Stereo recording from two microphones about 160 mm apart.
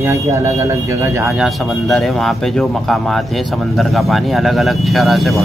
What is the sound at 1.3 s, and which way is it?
A man's voice, centre (ahead or behind).